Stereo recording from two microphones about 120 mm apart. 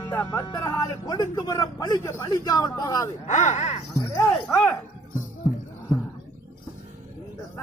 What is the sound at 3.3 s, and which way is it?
Gasp, 75° left (ahead or behind).